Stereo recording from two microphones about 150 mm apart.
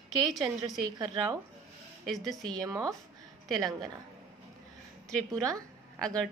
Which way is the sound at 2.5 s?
25° right (ahead or behind).